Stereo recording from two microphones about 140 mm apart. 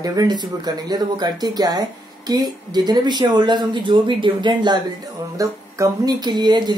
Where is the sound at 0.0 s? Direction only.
25° right (ahead or behind).